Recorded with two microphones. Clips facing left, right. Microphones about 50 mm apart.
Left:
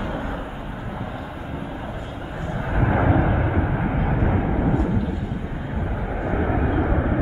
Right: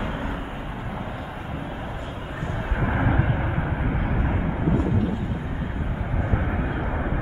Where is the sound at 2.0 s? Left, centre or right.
Right.